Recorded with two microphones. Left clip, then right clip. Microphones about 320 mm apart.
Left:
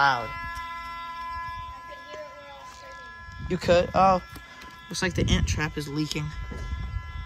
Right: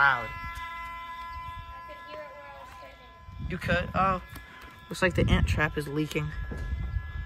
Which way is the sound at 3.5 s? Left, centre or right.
Centre.